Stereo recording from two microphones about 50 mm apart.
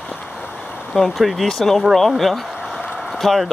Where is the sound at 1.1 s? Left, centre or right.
Centre.